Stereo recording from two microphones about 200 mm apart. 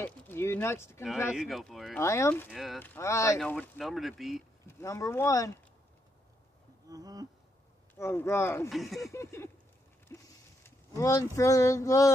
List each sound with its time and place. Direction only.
0.0 s speech: 10° left (ahead or behind)
1.3 s speech: centre (ahead or behind)
2.0 s speech: 15° left (ahead or behind)
2.5 s speech: centre (ahead or behind)
4.6 s speech: 15° left (ahead or behind)
6.9 s a sound: 20° right (ahead or behind)
7.9 s speech: 10° left (ahead or behind)
8.6 s speech: centre (ahead or behind)
9.1 s speech: 15° left (ahead or behind)
10.0 s a sound: 10° left (ahead or behind)
11.0 s speech: 15° left (ahead or behind)